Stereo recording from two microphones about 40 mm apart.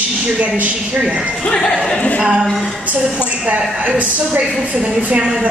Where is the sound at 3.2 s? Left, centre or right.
Right.